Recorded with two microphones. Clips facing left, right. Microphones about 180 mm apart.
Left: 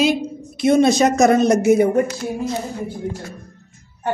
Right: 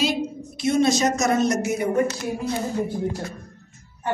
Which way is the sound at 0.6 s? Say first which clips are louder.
Left 6 dB; 55° left (ahead or behind).